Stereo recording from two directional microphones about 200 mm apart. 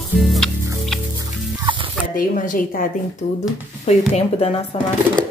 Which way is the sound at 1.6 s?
25° right (ahead or behind).